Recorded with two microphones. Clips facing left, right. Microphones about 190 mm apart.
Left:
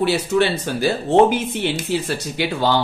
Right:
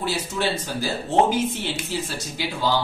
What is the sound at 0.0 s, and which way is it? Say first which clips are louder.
Speech: left 8 dB; 65° left (ahead or behind).